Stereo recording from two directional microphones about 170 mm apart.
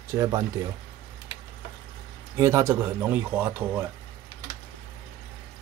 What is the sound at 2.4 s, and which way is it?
Speech, 15° right (ahead or behind).